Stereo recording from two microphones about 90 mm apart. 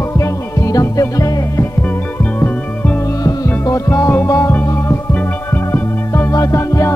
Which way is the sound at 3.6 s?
35° left (ahead or behind).